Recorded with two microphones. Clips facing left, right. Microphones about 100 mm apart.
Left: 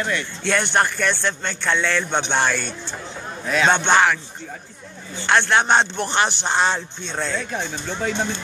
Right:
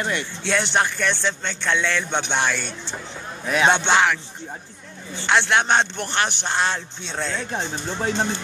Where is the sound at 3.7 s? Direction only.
Centre (ahead or behind).